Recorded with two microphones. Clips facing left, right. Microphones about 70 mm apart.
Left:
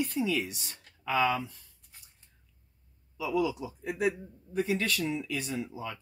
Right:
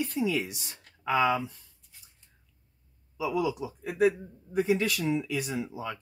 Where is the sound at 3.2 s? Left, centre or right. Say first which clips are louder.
Right 1 dB; centre.